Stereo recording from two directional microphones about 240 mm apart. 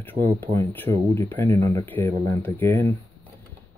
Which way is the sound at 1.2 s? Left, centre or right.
Centre.